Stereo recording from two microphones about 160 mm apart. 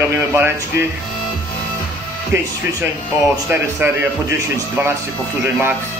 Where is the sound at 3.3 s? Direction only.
15° right (ahead or behind).